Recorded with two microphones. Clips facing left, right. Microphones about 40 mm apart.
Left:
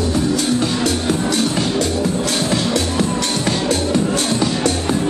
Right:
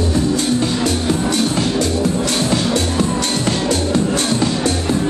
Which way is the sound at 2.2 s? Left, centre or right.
Right.